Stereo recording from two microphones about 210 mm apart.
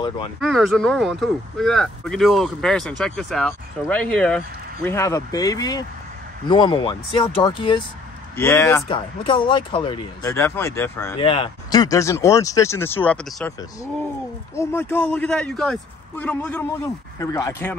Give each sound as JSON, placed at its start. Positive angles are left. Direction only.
{"t": 0.4, "sound": "speech", "side_deg": 0}
{"t": 8.4, "sound": "speech", "side_deg": 10}
{"t": 8.8, "sound": "speech", "side_deg": 25}
{"t": 10.3, "sound": "speech", "side_deg": 10}
{"t": 11.1, "sound": "speech", "side_deg": 25}
{"t": 14.5, "sound": "speech", "side_deg": 10}